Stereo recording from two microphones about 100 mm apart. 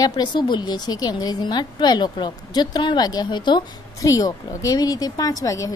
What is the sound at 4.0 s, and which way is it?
A woman's voice, 35° left (ahead or behind).